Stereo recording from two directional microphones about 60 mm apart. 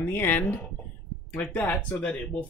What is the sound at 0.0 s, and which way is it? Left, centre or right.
Speech, left.